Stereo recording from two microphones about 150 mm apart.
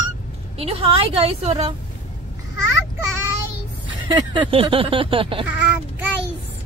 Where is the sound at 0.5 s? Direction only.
40° right (ahead or behind).